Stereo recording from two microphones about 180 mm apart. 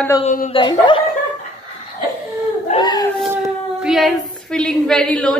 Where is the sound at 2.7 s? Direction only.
25° left (ahead or behind).